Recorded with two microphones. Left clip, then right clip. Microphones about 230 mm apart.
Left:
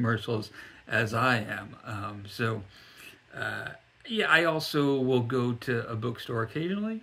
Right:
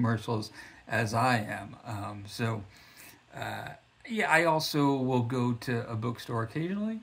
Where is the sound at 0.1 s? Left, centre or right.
Left.